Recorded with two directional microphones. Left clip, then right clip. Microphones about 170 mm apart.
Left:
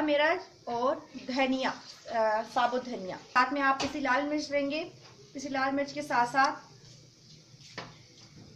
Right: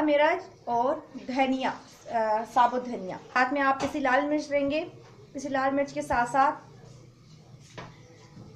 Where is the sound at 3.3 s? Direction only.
15° right (ahead or behind).